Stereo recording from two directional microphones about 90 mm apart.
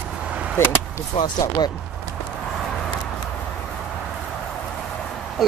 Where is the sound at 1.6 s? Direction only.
50° left (ahead or behind).